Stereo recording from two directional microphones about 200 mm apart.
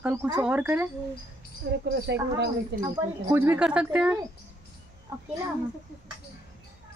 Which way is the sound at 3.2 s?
10° right (ahead or behind).